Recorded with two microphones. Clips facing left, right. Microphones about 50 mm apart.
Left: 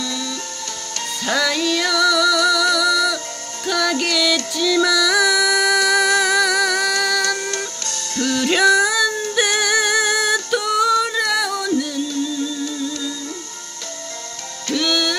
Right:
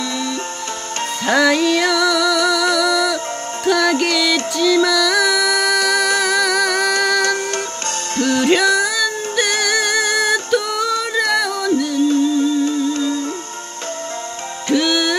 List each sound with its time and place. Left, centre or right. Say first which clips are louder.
1.2 s music: right 5 dB; right; by 6.9 s centre
6.9 s music: right 3 dB; centre
7.2 s music: right 3 dB; right
8.7 s music: left 1 dB; centre
12.9 s music: right 8 dB; right
14.7 s music: right 4 dB; centre